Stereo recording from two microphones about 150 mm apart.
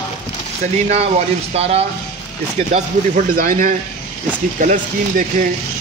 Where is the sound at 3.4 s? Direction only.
65° right (ahead or behind).